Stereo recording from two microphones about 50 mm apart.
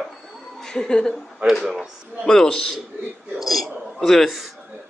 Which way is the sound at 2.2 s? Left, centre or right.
Centre.